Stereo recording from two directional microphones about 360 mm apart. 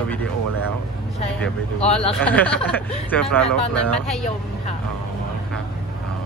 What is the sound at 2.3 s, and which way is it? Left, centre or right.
Speech, centre.